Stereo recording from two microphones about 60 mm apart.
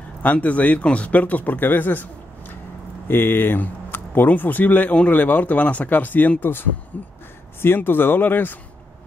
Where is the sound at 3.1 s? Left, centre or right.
Left.